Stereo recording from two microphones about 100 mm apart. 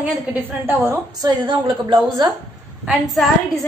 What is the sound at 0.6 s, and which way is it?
Speech, 25° right (ahead or behind).